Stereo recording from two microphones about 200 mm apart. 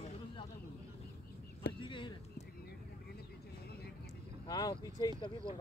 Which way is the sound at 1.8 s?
25° left (ahead or behind).